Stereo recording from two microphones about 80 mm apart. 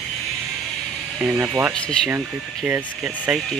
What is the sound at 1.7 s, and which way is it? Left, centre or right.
Speech, centre.